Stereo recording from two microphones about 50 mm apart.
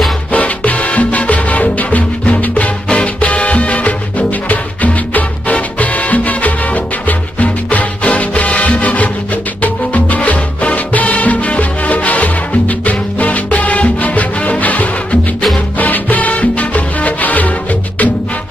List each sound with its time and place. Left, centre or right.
0.3 s salsa music: left
2.9 s music: left